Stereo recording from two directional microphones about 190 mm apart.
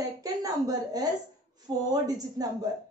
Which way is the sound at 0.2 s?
20° right (ahead or behind).